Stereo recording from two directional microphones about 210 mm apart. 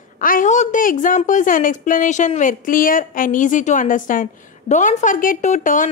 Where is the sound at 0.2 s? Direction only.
40° left (ahead or behind).